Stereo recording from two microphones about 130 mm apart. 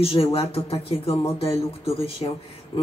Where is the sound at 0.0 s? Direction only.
50° left (ahead or behind).